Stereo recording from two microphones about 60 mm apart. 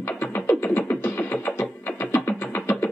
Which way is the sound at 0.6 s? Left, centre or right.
Left.